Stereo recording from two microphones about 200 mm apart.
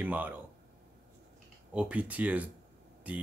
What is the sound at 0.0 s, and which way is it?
Speech, 10° right (ahead or behind).